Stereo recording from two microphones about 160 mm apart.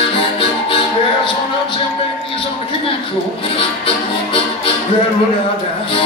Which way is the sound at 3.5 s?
35° left (ahead or behind).